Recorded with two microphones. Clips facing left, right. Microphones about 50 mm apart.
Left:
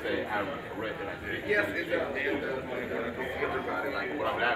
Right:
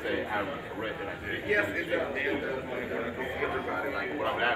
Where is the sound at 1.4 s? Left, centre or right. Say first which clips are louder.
Even; right.